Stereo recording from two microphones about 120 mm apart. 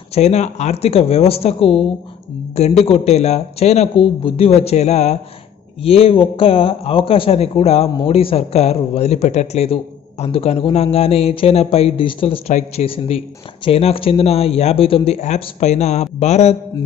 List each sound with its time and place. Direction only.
0.1 s a man's voice: 65° left (ahead or behind)
3.9 s a man's voice: 50° left (ahead or behind); by 5.2 s 65° left (ahead or behind)
5.8 s a man's voice: 55° left (ahead or behind)